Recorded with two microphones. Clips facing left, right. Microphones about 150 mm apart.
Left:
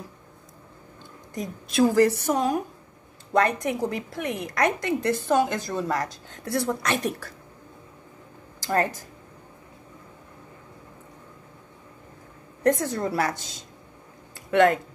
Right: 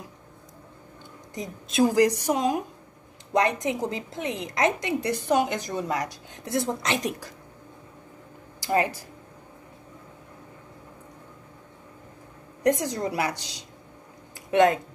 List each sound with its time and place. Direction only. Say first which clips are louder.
1.3 s a woman's voice: left 2 dB; 20° right (ahead or behind)
8.6 s speech: even; 15° right (ahead or behind)
12.6 s a woman's voice: left 1 dB; 15° right (ahead or behind)
13.3 s speech: left 2 dB; 50° left (ahead or behind)
14.5 s speech: left 1 dB; 20° right (ahead or behind)